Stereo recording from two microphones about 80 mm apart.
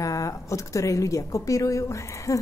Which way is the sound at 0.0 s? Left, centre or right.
Left.